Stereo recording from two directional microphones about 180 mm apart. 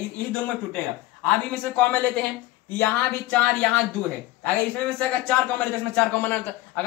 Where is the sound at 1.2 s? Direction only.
5° left (ahead or behind).